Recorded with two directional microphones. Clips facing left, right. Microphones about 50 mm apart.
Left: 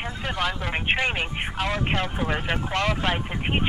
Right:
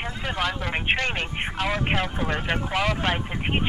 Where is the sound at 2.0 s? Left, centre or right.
Centre.